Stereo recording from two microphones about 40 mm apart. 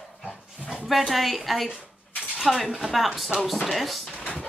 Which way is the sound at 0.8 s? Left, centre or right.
Centre.